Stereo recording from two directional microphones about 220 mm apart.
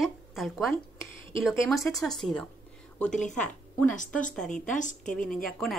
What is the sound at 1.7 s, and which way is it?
A woman's voice, centre (ahead or behind).